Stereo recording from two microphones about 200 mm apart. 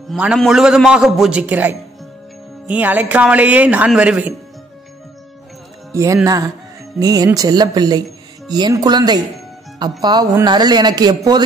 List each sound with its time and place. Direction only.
0.1 s a man's voice: centre (ahead or behind)
6.2 s a man's voice: 20° right (ahead or behind)